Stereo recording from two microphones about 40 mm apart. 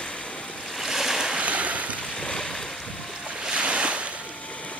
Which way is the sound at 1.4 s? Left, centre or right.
Right.